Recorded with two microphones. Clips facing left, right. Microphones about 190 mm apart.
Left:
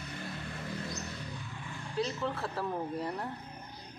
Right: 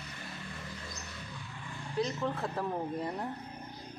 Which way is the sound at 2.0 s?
15° right (ahead or behind).